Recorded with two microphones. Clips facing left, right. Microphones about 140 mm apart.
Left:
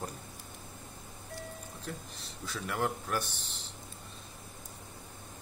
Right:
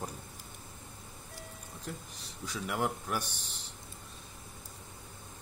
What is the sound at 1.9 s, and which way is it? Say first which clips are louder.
Speech: even; 10° right (ahead or behind).